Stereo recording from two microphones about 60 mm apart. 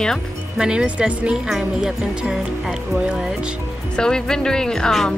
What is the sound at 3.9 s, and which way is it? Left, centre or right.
Speech, centre.